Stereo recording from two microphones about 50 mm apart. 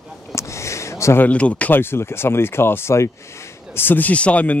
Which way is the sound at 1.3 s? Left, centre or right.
Left.